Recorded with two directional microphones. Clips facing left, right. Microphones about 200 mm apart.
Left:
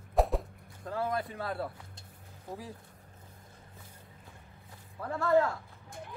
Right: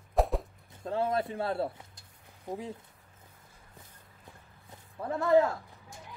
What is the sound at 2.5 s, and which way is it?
Speech, 20° right (ahead or behind).